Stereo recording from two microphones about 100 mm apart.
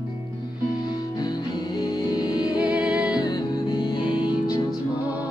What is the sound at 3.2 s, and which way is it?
Music, 40° left (ahead or behind).